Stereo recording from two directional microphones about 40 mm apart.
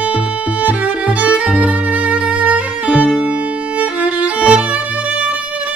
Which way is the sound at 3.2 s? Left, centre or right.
Right.